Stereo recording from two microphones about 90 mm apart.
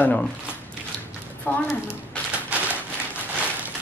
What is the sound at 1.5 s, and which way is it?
Speech, 20° left (ahead or behind).